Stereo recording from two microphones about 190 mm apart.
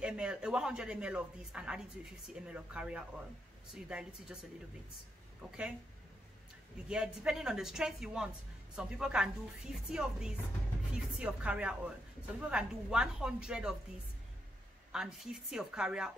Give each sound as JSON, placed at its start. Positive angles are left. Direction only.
{"t": 0.0, "sound": "a woman's voice", "side_deg": -5}
{"t": 5.4, "sound": "a woman's voice", "side_deg": 0}
{"t": 6.9, "sound": "a woman's voice", "side_deg": -5}
{"t": 14.9, "sound": "a woman's voice", "side_deg": 0}